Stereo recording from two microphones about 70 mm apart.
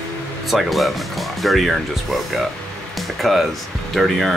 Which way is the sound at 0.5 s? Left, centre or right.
Centre.